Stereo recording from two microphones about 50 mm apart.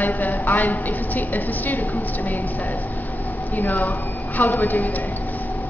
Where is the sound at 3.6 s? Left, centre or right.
Left.